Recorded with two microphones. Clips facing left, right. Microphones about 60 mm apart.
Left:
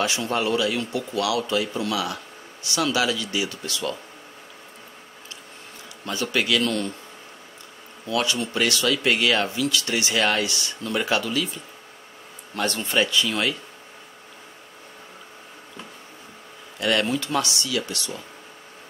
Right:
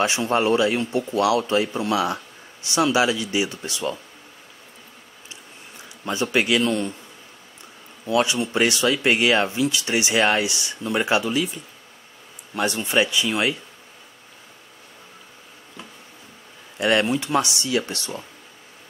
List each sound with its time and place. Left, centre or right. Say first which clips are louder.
0.0 s speech: right 4 dB; right
6.0 s speech: right 3 dB; right
8.1 s speech: right 4 dB; right
16.7 s speech: right 3 dB; right